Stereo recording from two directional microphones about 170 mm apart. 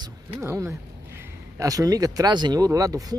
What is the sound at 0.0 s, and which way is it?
Speech, 25° right (ahead or behind).